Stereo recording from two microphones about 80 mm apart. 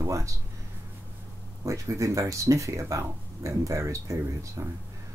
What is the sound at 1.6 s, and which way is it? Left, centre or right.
Speech, right.